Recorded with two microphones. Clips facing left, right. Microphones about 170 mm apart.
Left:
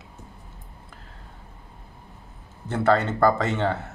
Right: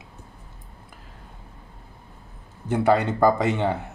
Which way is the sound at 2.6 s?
15° right (ahead or behind).